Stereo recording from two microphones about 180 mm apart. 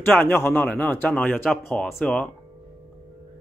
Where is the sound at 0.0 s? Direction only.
5° left (ahead or behind).